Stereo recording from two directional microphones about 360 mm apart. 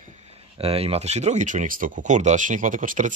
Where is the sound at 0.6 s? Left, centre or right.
Centre.